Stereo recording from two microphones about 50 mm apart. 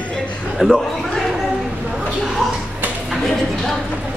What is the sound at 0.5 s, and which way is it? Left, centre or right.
Speech, centre.